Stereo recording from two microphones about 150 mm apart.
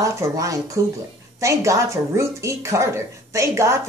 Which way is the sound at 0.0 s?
20° right (ahead or behind).